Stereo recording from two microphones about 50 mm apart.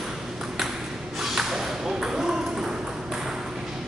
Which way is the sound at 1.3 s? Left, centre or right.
Centre.